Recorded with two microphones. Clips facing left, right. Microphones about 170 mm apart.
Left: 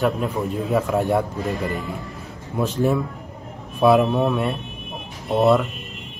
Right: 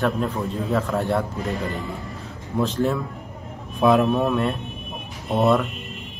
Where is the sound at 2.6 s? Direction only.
10° left (ahead or behind).